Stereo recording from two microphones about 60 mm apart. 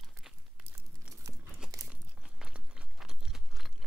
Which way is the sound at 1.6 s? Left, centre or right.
Centre.